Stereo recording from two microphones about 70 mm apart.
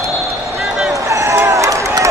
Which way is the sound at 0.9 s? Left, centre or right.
Right.